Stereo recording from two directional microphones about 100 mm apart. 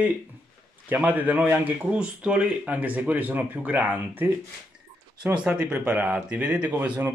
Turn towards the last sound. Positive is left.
turn(degrees=-15)  # may be behind; listen again after turning